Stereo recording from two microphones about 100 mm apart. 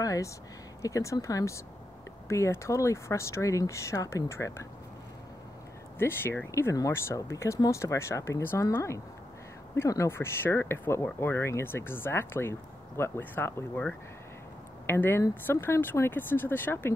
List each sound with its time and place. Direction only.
0.0 s speech: 35° left (ahead or behind)
5.9 s speech: 20° left (ahead or behind)
14.9 s speech: 25° left (ahead or behind)